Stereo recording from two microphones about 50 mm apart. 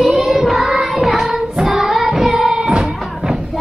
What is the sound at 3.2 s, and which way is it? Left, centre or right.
Music, right.